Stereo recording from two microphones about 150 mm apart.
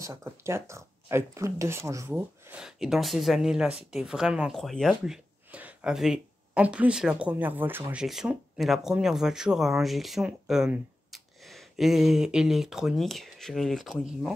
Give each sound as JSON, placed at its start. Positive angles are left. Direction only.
{"t": 0.0, "sound": "speech", "side_deg": -20}
{"t": 2.1, "sound": "speech", "side_deg": -5}